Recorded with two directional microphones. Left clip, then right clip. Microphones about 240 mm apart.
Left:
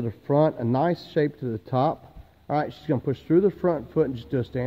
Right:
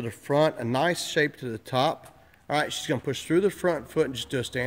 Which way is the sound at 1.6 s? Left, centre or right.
Centre.